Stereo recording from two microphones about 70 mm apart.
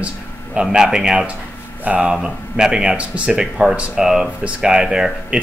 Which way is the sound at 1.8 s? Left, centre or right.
Right.